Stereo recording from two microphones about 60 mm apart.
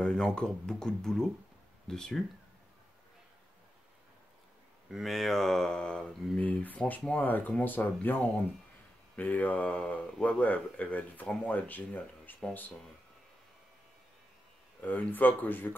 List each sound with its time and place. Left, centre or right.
0.0 s speech: centre
5.0 s speech: centre; by 12.4 s left
14.8 s speech: left